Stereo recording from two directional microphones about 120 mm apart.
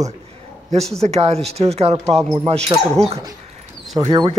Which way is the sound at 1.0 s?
60° right (ahead or behind).